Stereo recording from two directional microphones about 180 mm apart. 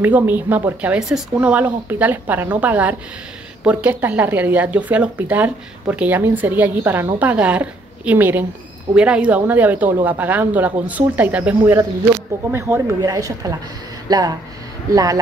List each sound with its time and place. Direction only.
0.0 s speech: 10° right (ahead or behind)